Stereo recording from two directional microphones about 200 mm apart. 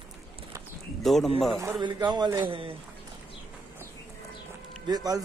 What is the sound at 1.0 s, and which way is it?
Speech, centre (ahead or behind).